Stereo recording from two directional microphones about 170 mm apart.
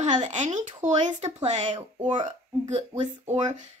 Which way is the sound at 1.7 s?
30° right (ahead or behind).